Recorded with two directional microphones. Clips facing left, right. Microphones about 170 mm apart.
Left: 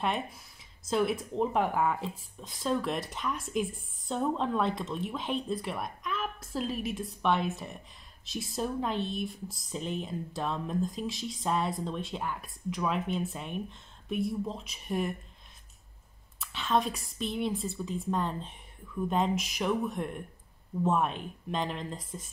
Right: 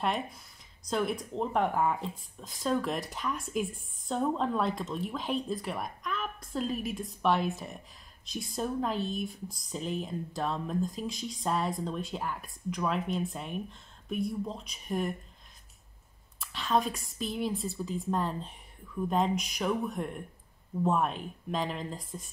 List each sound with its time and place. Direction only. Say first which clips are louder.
0.8 s speech: left 2 dB; 5° left (ahead or behind)
16.3 s speech: even; centre (ahead or behind)